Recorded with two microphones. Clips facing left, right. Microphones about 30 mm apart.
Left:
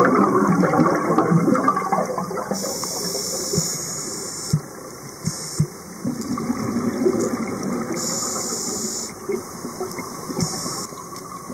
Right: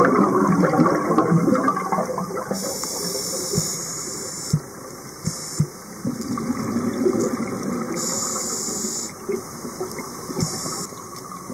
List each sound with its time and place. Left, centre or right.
0.0 s toilet flush: centre
5.2 s heart sounds: centre